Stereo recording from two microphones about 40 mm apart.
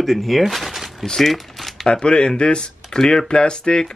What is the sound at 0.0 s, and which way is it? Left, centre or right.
Speech, centre.